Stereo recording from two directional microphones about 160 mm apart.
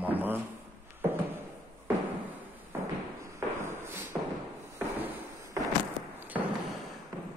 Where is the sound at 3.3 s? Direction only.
15° right (ahead or behind).